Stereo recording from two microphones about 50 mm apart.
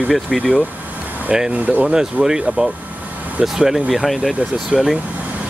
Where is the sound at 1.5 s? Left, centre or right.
Right.